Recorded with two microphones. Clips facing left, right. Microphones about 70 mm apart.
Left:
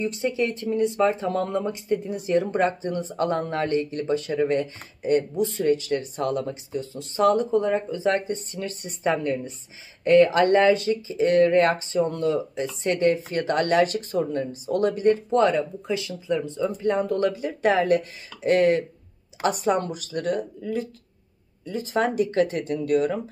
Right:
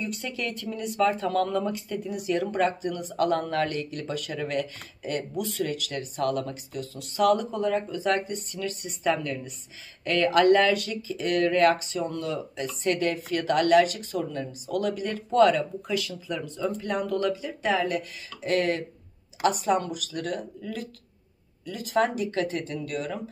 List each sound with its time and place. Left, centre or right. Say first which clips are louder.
0.3 s speech: left 7 dB; left